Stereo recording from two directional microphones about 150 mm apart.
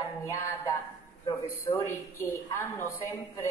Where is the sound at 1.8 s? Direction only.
20° left (ahead or behind).